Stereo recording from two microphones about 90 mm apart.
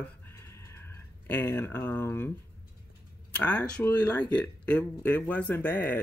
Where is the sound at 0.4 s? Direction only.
30° left (ahead or behind).